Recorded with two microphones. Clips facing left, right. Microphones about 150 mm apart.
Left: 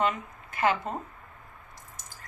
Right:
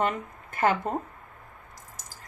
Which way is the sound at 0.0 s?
50° right (ahead or behind).